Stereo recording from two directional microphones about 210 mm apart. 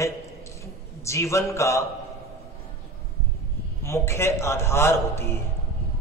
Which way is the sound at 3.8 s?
10° left (ahead or behind).